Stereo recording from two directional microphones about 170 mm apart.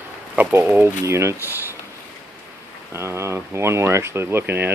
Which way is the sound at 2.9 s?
15° right (ahead or behind).